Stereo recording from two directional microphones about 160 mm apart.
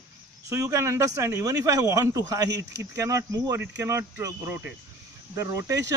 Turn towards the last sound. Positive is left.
turn(degrees=-20)  # may be behind; listen again after turning